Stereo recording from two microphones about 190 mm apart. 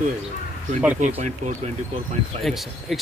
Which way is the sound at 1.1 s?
35° right (ahead or behind).